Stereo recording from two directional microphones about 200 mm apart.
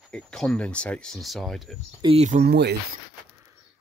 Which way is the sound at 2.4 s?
55° right (ahead or behind).